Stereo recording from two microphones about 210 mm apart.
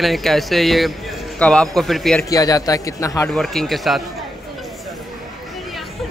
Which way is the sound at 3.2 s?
Centre (ahead or behind).